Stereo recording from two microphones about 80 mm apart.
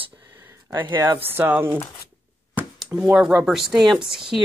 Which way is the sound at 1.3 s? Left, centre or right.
Right.